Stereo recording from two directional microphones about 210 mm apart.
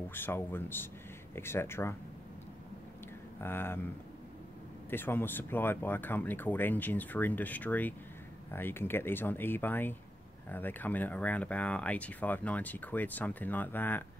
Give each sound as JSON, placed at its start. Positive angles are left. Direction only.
{"t": 0.1, "sound": "speech", "side_deg": 10}
{"t": 3.3, "sound": "speech", "side_deg": 10}